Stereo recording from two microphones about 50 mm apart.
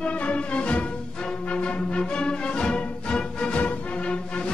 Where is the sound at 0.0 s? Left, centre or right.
Left.